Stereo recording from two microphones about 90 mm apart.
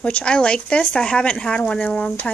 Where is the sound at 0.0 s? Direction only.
10° left (ahead or behind).